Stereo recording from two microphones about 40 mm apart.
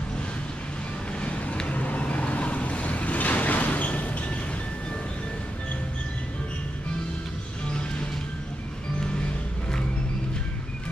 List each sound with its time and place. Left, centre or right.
1.2 s vehicle: left